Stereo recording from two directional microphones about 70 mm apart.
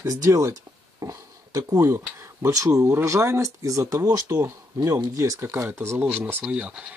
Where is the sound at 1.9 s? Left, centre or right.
Right.